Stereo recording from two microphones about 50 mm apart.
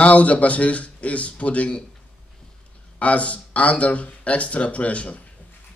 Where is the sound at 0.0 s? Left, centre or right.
Left.